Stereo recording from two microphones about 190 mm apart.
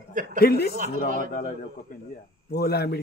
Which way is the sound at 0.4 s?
55° left (ahead or behind).